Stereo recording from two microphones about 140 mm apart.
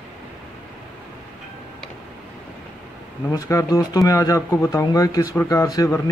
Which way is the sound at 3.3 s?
20° left (ahead or behind).